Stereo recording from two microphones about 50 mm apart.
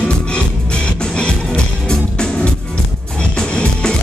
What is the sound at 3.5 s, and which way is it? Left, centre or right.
Music, centre.